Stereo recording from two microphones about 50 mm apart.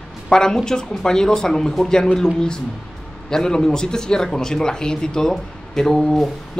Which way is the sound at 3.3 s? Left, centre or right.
Centre.